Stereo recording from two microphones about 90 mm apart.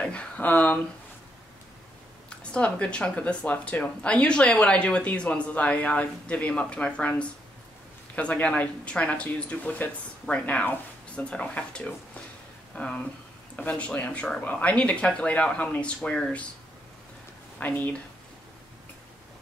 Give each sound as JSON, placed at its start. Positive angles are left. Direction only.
{"t": 0.0, "sound": "a sound", "side_deg": 10}
{"t": 2.2, "sound": "speech", "side_deg": 10}
{"t": 17.6, "sound": "speech", "side_deg": 20}